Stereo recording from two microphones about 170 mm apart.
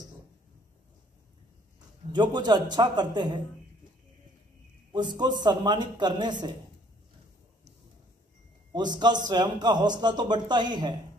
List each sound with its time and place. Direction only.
2.1 s a man's voice: 25° right (ahead or behind)
4.9 s a man's voice: 25° right (ahead or behind)
8.7 s a man's voice: 25° right (ahead or behind)